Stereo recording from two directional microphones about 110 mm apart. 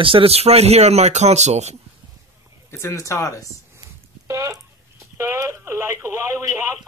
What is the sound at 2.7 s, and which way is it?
Speech, 25° left (ahead or behind).